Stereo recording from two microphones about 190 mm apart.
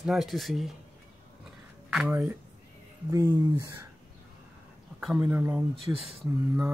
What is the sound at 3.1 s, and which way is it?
Speech, 20° right (ahead or behind).